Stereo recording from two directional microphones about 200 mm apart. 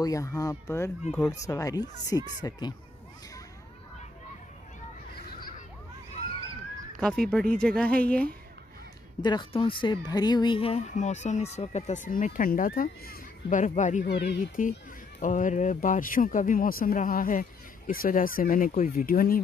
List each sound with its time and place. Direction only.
0.0 s speech: 15° left (ahead or behind)
7.0 s speech: 5° left (ahead or behind)
9.2 s speech: 20° left (ahead or behind); by 14.0 s 40° left (ahead or behind)
14.0 s speech: 55° left (ahead or behind)